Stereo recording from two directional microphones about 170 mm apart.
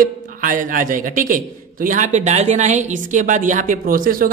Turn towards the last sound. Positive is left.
turn(degrees=-55)  # may be behind; listen again after turning